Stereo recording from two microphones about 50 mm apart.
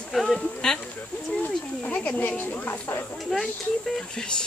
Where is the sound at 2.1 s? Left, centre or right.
Left.